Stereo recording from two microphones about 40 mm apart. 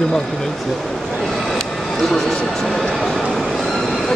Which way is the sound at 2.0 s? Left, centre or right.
Centre.